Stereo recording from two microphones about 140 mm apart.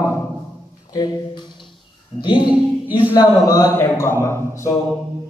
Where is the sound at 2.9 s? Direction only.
30° left (ahead or behind).